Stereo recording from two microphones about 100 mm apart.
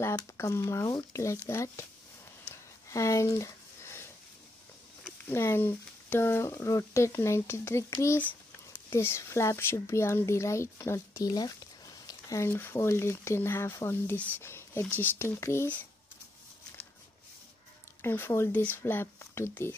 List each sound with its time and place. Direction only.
0.0 s speech: 30° left (ahead or behind)
2.9 s speech: 30° left (ahead or behind)
5.3 s speech: 25° left (ahead or behind)
11.2 s a sound: 40° left (ahead or behind)
12.4 s speech: 25° left (ahead or behind)
18.0 s speech: 25° left (ahead or behind)